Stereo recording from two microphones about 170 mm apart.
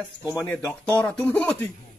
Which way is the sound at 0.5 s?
10° left (ahead or behind).